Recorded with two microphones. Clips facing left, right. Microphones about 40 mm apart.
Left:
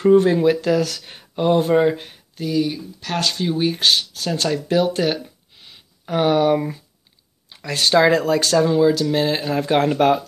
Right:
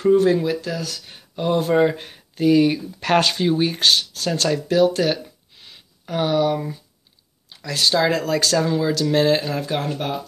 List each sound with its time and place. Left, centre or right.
0.0 s speech: left
0.6 s speech: left
1.0 s speech: left
1.4 s speech: left
1.7 s speech: centre
2.1 s speech: centre; by 3.2 s right
3.3 s speech: centre
4.6 s a sound: centre
6.0 s speech: left
9.0 s speech: centre
9.6 s speech: left
9.9 s speech: left